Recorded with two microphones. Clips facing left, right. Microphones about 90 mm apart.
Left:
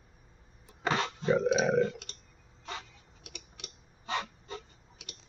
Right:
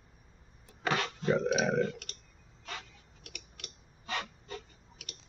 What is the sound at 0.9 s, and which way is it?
Burping, 25° left (ahead or behind).